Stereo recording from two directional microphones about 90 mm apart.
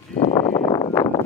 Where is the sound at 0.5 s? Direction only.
50° left (ahead or behind).